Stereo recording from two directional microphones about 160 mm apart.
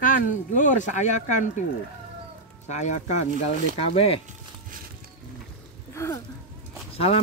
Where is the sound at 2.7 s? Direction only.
45° left (ahead or behind).